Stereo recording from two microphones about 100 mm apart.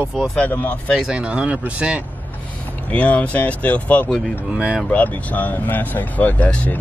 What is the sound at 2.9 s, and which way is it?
Speech, 15° left (ahead or behind).